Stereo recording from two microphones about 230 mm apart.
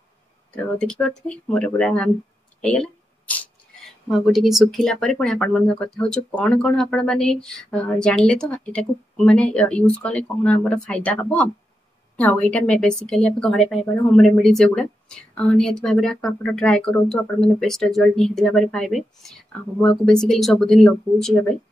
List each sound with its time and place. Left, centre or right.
0.7 s speech: centre
2.6 s a sound: centre
4.1 s speech: centre